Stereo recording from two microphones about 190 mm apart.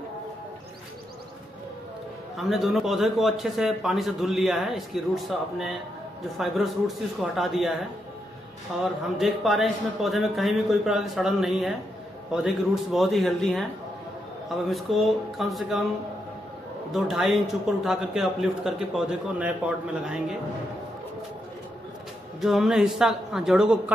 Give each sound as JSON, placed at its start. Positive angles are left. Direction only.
{"t": 2.3, "sound": "a man's voice", "side_deg": 0}
{"t": 9.2, "sound": "a man's voice", "side_deg": 0}
{"t": 16.9, "sound": "a man's voice", "side_deg": 0}
{"t": 22.4, "sound": "a man's voice", "side_deg": 0}